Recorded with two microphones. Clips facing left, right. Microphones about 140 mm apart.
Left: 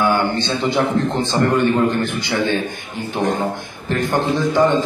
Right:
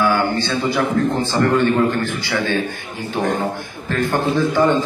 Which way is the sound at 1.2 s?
20° left (ahead or behind).